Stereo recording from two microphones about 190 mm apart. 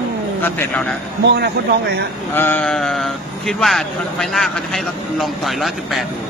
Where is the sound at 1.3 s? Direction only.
60° right (ahead or behind).